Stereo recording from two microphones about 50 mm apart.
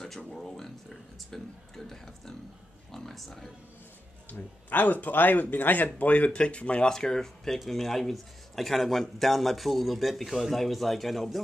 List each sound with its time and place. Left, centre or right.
0.0 s a sound: centre
0.4 s speech: centre
4.3 s speech: left
6.9 s speech: centre